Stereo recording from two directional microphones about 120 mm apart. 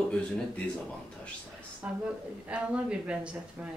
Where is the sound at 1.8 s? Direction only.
10° right (ahead or behind).